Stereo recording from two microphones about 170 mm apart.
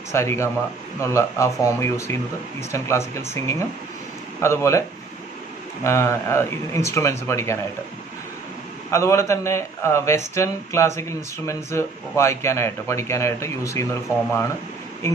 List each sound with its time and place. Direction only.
0.1 s speech: 15° left (ahead or behind)
5.9 s speech: 15° left (ahead or behind)
8.9 s speech: 15° left (ahead or behind)